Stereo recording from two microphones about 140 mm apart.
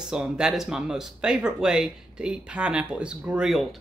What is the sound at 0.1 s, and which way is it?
Speech, 5° right (ahead or behind).